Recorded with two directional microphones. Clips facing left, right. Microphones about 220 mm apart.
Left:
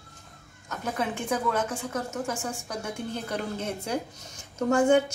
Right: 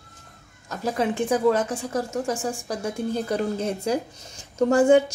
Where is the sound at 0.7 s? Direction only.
35° right (ahead or behind).